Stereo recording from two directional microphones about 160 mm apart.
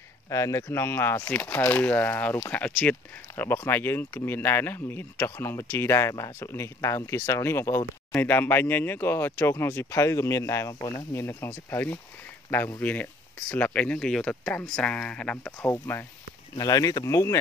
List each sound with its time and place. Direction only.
0.3 s speech: 20° left (ahead or behind)